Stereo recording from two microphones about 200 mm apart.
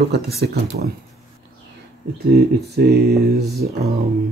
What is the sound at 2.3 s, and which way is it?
Speech, 55° right (ahead or behind).